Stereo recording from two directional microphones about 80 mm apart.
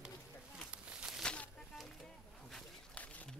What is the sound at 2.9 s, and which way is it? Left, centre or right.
Pour, centre.